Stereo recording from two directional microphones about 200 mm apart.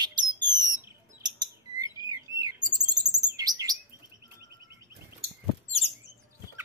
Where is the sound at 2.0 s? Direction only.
20° right (ahead or behind).